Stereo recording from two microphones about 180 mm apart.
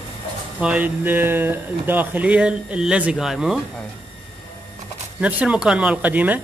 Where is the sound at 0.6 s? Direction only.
10° right (ahead or behind).